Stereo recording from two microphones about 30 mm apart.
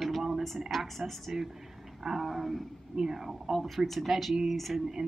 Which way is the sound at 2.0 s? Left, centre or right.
Centre.